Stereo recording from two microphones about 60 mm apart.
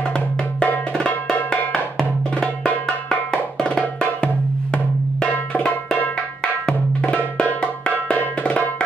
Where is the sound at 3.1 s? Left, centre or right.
Centre.